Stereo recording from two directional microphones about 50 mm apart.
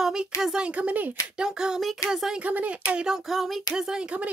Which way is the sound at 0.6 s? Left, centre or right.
Right.